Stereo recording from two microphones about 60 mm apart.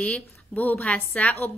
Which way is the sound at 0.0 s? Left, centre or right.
Left.